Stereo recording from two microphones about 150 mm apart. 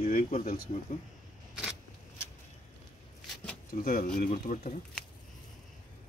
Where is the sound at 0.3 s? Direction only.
55° left (ahead or behind).